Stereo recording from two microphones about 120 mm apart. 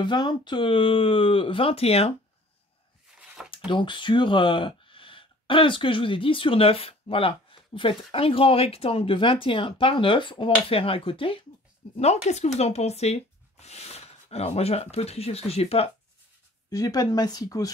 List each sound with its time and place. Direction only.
0.0 s speech: 40° left (ahead or behind); by 2.1 s 55° left (ahead or behind)
3.4 s speech: 45° left (ahead or behind)
12.0 s speech: 65° left (ahead or behind)
16.7 s speech: 30° left (ahead or behind)